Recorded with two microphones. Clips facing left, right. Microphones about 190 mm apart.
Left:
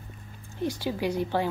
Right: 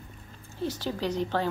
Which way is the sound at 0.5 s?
10° left (ahead or behind).